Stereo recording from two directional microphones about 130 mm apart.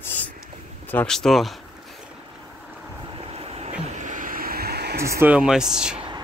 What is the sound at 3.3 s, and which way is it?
Vehicle, 50° right (ahead or behind).